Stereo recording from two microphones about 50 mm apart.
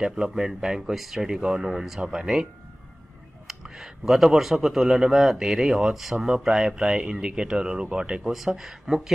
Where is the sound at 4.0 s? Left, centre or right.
Centre.